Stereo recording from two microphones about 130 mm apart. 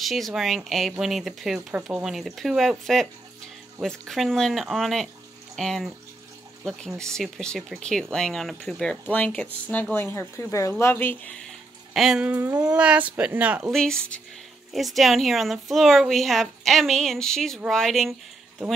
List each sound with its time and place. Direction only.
0.0 s a woman's voice: centre (ahead or behind); by 11.3 s 15° left (ahead or behind)
11.4 s a sound: centre (ahead or behind)
12.7 s speech: 10° right (ahead or behind)
13.7 s a woman's voice: 5° left (ahead or behind)